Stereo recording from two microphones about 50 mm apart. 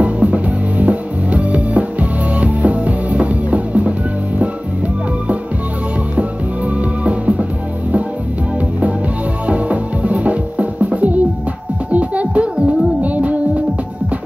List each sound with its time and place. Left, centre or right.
0.0 s music: right
6.8 s music: right
9.5 s music: right